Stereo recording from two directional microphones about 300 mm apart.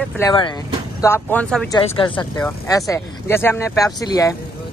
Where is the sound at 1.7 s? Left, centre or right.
Centre.